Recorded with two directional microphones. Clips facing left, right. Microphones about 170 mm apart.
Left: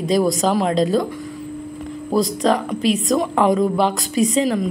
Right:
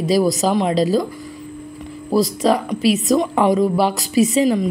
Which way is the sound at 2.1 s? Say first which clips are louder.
Right 1 dB; 5° right (ahead or behind).